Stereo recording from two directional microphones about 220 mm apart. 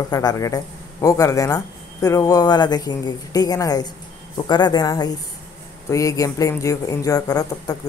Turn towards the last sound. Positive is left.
turn(degrees=15)  # may be behind; listen again after turning